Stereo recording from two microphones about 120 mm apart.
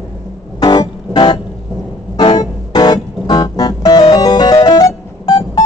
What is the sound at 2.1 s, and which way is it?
Keyboard, 35° left (ahead or behind).